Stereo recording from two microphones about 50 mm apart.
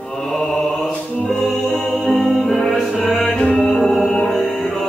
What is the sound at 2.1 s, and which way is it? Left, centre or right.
Music, centre.